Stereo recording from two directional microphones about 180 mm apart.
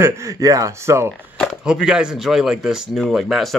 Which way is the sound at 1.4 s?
Centre (ahead or behind).